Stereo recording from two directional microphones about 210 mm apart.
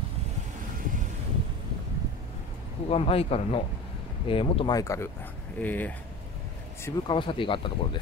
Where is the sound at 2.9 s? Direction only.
30° left (ahead or behind); by 5.9 s 10° left (ahead or behind).